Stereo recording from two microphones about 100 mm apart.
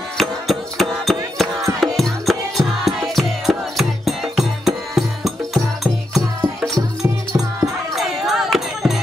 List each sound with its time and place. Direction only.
0.2 s music: centre (ahead or behind)